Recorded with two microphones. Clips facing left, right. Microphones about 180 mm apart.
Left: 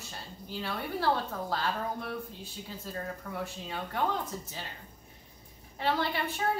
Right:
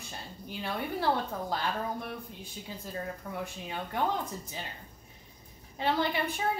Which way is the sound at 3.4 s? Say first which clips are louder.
Even; 15° right (ahead or behind).